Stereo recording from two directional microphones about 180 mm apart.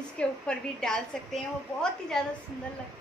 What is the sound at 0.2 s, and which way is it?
A woman's voice, 5° left (ahead or behind).